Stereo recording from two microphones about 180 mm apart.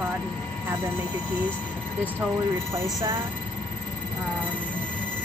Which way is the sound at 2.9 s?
15° right (ahead or behind).